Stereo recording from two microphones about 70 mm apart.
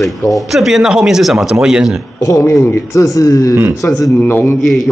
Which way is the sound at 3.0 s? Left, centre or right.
Left.